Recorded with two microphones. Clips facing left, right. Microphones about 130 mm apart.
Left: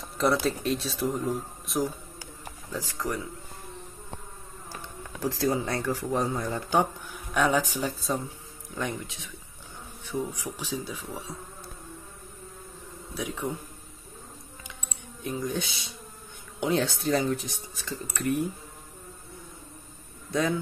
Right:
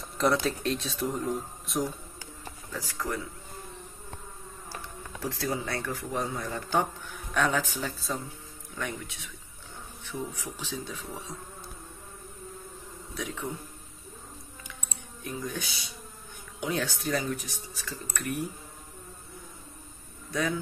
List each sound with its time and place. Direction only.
0.0 s speech: centre (ahead or behind)
2.7 s speech: 20° left (ahead or behind)
5.2 s speech: 30° left (ahead or behind)
7.3 s speech: 10° left (ahead or behind)
10.0 s speech: 15° left (ahead or behind)
13.1 s speech: 15° left (ahead or behind)
15.2 s speech: 25° left (ahead or behind)